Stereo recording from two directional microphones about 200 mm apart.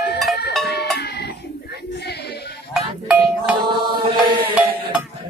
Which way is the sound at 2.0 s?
55° left (ahead or behind).